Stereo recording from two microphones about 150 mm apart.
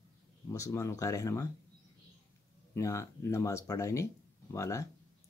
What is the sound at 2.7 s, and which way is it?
A man's voice, 20° left (ahead or behind).